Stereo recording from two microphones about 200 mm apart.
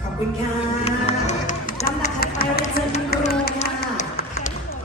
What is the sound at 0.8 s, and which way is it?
Music, 35° left (ahead or behind).